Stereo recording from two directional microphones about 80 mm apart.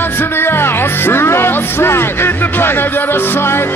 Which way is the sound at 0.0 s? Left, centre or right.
Left.